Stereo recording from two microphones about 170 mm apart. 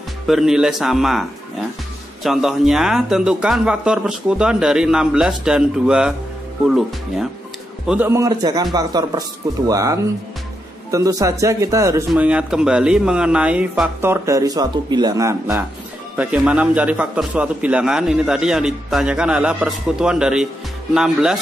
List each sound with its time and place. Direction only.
0.3 s a man's voice: centre (ahead or behind)
2.2 s a man's voice: centre (ahead or behind)
7.9 s speech: 15° right (ahead or behind)
12.1 s speech: 5° right (ahead or behind)
16.2 s a man's voice: 5° right (ahead or behind)